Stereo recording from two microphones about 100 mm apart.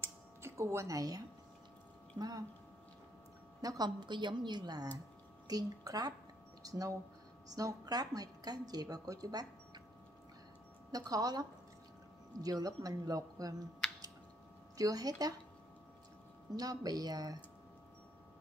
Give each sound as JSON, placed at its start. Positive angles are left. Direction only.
{"t": 0.0, "sound": "tick-tock", "side_deg": -25}
{"t": 2.1, "sound": "a woman's voice", "side_deg": -40}
{"t": 3.6, "sound": "a woman's voice", "side_deg": -40}
{"t": 10.9, "sound": "a woman's voice", "side_deg": -35}
{"t": 14.8, "sound": "a woman's voice", "side_deg": -40}
{"t": 16.5, "sound": "a woman's voice", "side_deg": -40}